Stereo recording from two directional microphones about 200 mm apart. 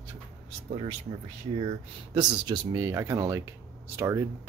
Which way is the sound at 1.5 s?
25° right (ahead or behind).